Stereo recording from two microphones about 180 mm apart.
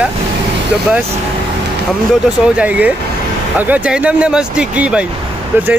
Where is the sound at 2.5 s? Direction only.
10° right (ahead or behind).